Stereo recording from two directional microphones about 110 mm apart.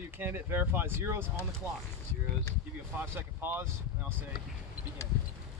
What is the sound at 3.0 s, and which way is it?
Speech, 20° right (ahead or behind).